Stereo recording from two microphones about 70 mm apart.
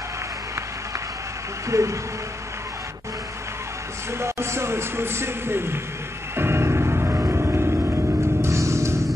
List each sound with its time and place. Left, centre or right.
1.7 s speech: right
4.2 s speech: right
6.3 s music: right